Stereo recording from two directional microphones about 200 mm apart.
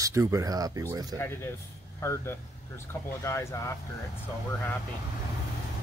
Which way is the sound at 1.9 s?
15° left (ahead or behind).